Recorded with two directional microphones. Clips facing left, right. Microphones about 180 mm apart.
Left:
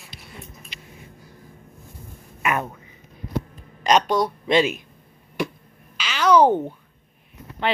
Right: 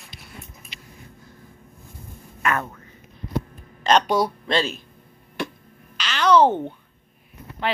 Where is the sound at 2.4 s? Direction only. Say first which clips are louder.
Even; 15° left (ahead or behind).